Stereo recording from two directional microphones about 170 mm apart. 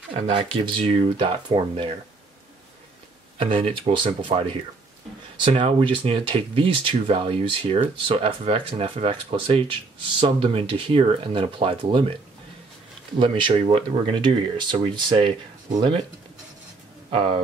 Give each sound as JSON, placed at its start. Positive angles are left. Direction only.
{"t": 0.1, "sound": "speech", "side_deg": -30}
{"t": 3.4, "sound": "speech", "side_deg": -30}
{"t": 13.2, "sound": "speech", "side_deg": -30}
{"t": 17.1, "sound": "speech", "side_deg": -30}